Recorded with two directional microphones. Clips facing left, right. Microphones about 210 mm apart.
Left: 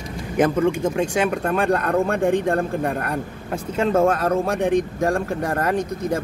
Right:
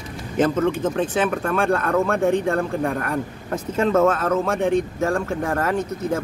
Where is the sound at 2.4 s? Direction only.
30° left (ahead or behind).